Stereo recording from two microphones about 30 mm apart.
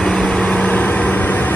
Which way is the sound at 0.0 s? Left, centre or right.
Left.